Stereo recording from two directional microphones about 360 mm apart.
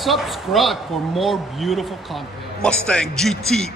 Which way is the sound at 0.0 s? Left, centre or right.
Centre.